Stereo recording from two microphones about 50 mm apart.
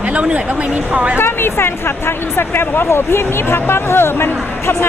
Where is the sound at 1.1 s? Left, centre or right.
Left.